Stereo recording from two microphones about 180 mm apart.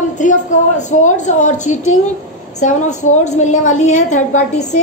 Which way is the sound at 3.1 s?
40° left (ahead or behind).